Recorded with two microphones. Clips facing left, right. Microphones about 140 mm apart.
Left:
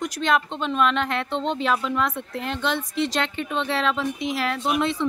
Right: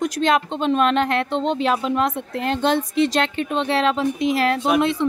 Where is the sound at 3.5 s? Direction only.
20° right (ahead or behind).